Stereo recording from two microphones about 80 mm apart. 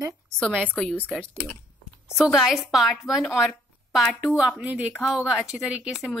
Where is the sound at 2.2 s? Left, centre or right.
Centre.